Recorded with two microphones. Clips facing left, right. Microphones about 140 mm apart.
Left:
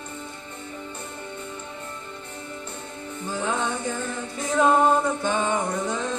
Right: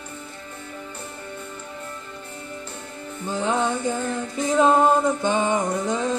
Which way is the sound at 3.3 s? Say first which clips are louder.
Right 4 dB; 20° right (ahead or behind).